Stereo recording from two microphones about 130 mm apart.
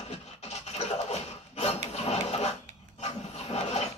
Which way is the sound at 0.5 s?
60° left (ahead or behind).